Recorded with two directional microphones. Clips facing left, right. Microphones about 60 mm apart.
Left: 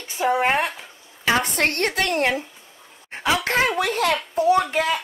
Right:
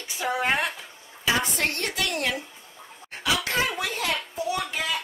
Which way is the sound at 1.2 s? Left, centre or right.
Left.